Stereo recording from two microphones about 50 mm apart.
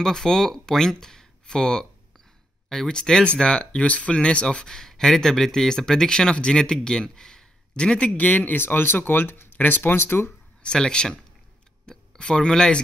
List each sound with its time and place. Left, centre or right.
0.0 s a man's voice: centre; by 10.3 s left
10.6 s a man's voice: centre